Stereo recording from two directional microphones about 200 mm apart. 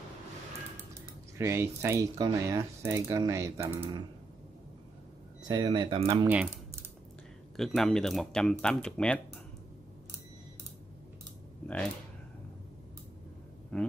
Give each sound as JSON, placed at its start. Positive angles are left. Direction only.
{"t": 1.4, "sound": "speech", "side_deg": -15}
{"t": 5.4, "sound": "speech", "side_deg": -20}
{"t": 6.2, "sound": "speech", "side_deg": -10}
{"t": 7.5, "sound": "speech", "side_deg": 0}
{"t": 11.6, "sound": "speech", "side_deg": 5}
{"t": 13.7, "sound": "speech", "side_deg": 5}